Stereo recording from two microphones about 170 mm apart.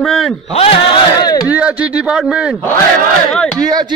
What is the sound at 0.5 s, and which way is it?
Speech, 35° left (ahead or behind).